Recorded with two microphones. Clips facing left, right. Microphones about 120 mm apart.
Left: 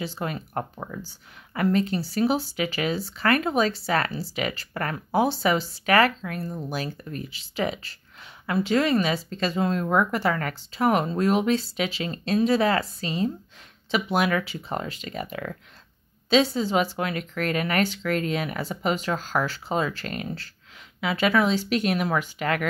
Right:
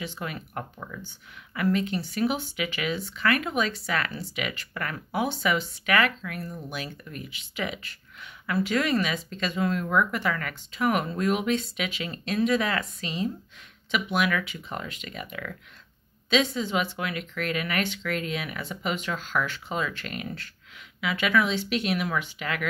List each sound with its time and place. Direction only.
0.0 s speech: 35° left (ahead or behind)